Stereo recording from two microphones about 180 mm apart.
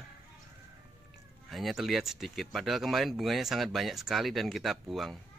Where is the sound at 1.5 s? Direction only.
Centre (ahead or behind).